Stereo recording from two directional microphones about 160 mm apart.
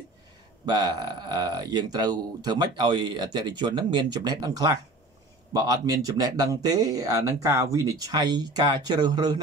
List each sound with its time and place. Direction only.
0.7 s speech: 25° right (ahead or behind)